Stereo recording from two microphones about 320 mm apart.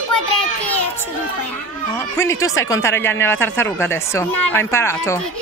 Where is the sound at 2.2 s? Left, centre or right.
Centre.